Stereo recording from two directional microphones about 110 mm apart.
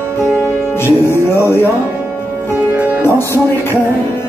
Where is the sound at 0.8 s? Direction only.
20° left (ahead or behind).